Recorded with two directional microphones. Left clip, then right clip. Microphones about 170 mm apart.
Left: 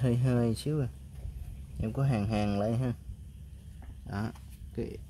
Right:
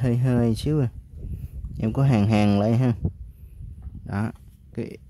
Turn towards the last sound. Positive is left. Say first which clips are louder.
# right 5 dB
turn(degrees=-35)  # may be behind; listen again after turning